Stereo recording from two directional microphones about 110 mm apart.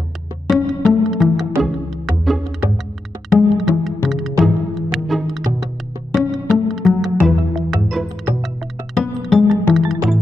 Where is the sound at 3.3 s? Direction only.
Centre (ahead or behind).